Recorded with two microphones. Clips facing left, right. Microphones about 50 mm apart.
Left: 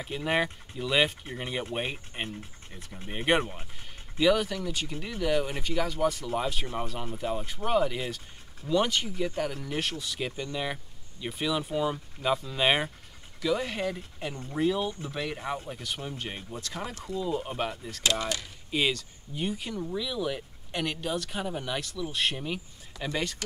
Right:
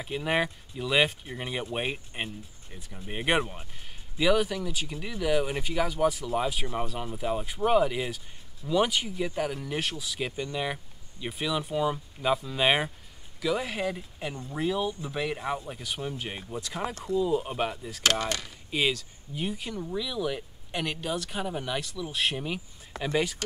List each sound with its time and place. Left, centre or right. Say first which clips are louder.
0.0 s speech: even; centre
18.2 s speech: right 1 dB; right
18.7 s speech: even; centre